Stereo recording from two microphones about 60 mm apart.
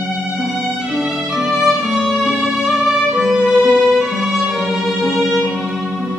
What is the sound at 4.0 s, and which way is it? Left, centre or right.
Violin, centre.